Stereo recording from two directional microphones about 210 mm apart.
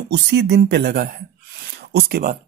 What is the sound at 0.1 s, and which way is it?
Speech, 55° right (ahead or behind).